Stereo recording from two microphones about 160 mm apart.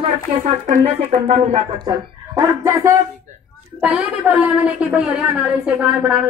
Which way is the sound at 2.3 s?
20° right (ahead or behind).